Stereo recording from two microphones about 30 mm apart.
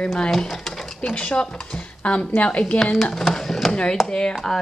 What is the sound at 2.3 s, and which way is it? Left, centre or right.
Speech, left.